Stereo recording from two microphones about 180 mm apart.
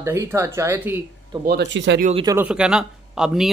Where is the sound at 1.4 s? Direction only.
65° right (ahead or behind).